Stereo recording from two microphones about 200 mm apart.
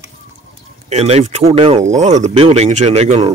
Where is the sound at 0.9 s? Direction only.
30° right (ahead or behind).